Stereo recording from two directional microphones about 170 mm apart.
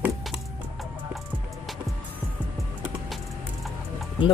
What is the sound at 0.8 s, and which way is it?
Music, centre (ahead or behind).